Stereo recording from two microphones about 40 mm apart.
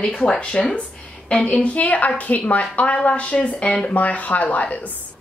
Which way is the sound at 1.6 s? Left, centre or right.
Left.